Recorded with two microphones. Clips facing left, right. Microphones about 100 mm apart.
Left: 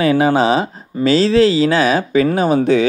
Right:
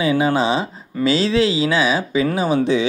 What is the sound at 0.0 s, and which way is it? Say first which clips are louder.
Speech: left 4 dB; 65° left (ahead or behind).